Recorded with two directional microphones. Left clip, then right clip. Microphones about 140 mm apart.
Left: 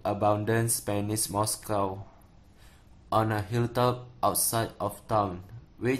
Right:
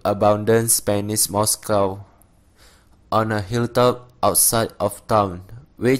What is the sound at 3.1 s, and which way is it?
Speech, 40° right (ahead or behind).